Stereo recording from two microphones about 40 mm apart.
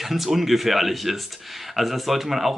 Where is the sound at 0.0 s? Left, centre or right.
Centre.